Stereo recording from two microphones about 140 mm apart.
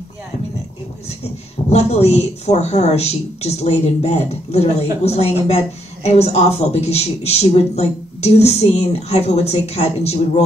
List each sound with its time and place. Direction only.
1.7 s speech: 50° left (ahead or behind)